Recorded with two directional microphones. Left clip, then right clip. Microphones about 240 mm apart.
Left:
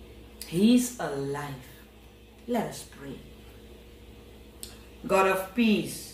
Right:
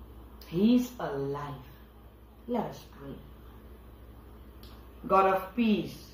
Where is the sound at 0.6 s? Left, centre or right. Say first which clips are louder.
Left 3 dB; left.